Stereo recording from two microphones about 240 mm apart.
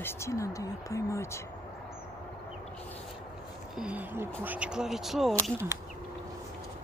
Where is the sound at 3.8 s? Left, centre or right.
Centre.